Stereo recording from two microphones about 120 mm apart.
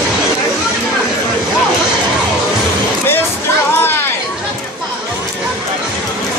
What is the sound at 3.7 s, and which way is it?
Chatter, 20° left (ahead or behind).